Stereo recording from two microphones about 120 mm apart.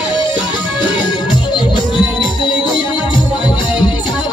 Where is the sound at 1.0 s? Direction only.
40° left (ahead or behind).